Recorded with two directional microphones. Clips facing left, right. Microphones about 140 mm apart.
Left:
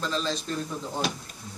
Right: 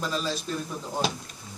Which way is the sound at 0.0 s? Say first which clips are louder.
Even; 10° right (ahead or behind).